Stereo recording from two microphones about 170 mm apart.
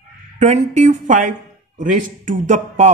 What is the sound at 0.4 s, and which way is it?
Speech, 45° right (ahead or behind).